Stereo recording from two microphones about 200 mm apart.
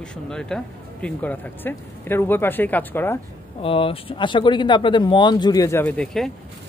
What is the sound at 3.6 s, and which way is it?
Speech, 25° left (ahead or behind).